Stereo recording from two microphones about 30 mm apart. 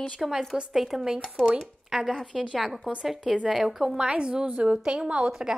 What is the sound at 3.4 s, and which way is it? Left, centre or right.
Speech, centre.